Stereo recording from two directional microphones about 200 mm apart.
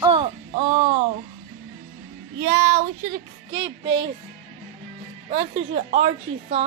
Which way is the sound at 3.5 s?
25° right (ahead or behind).